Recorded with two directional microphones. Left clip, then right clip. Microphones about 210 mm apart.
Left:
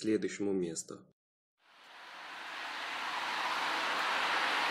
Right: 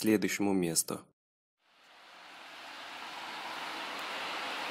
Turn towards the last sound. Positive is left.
turn(degrees=0)  # may be behind; listen again after turning